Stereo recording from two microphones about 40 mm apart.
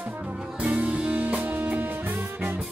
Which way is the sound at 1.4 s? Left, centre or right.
Right.